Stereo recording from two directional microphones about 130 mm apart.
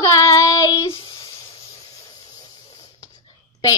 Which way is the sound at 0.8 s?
45° left (ahead or behind).